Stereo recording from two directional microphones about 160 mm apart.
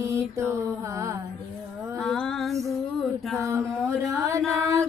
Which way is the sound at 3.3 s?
20° right (ahead or behind).